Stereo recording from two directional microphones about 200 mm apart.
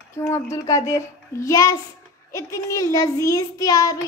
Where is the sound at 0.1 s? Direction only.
15° left (ahead or behind).